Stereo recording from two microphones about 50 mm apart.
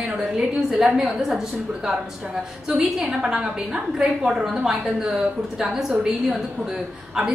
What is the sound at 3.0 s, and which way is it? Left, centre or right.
A woman's voice, centre.